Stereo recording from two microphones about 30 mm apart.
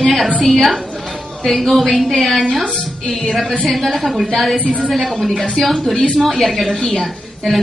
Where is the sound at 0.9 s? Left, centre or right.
Centre.